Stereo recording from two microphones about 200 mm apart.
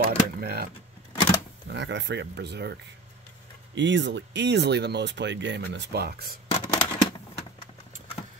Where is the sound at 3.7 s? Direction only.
60° right (ahead or behind).